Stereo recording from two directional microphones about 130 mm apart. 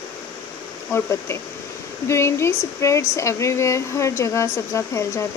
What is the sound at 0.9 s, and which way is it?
Speech, 20° left (ahead or behind).